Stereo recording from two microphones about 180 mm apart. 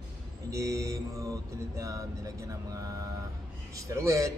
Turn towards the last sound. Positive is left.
turn(degrees=-15)  # may be behind; listen again after turning